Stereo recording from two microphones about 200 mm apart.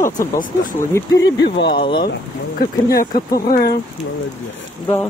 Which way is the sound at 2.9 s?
45° left (ahead or behind).